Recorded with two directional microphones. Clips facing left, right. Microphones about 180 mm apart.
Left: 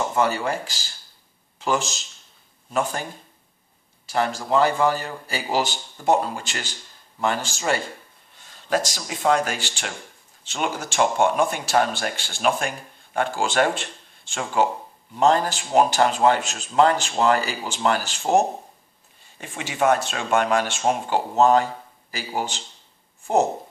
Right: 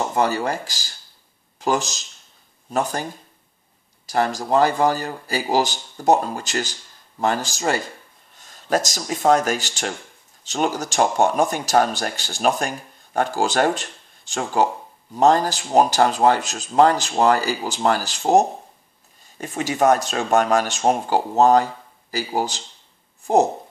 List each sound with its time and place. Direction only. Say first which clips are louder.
0.1 s speech: right 1 dB; 40° right (ahead or behind)
19.4 s speech: right 3 dB; 40° right (ahead or behind)